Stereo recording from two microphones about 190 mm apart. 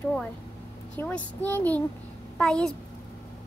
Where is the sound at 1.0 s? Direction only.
10° left (ahead or behind).